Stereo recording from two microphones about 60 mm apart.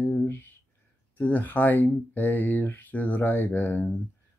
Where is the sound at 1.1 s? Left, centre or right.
Left.